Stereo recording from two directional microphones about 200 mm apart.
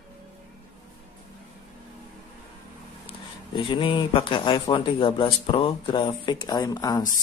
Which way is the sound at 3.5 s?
25° left (ahead or behind).